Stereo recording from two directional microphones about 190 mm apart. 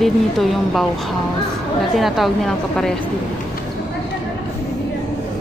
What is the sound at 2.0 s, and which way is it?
A woman's voice, centre (ahead or behind).